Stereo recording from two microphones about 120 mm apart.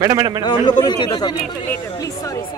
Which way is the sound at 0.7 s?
35° left (ahead or behind).